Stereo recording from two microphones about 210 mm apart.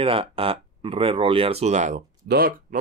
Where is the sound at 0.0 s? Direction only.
25° right (ahead or behind).